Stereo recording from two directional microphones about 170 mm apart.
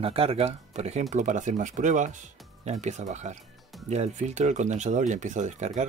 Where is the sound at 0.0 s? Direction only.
35° right (ahead or behind).